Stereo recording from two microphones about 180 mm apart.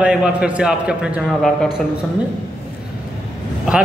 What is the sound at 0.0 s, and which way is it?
A man's voice, 5° right (ahead or behind).